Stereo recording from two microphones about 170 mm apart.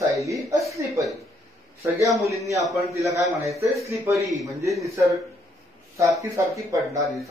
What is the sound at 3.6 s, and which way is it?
Speech, 15° right (ahead or behind).